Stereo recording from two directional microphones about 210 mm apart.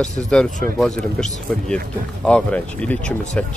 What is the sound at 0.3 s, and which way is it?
Speech, 5° left (ahead or behind).